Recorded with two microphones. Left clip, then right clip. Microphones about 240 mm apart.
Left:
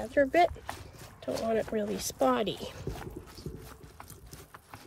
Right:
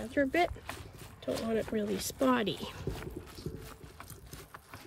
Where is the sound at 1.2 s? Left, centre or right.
Centre.